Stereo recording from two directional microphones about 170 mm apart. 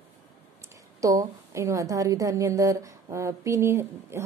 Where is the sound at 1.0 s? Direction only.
20° right (ahead or behind).